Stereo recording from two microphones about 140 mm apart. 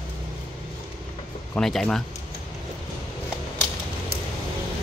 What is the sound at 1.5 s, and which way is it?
Speech, 5° left (ahead or behind).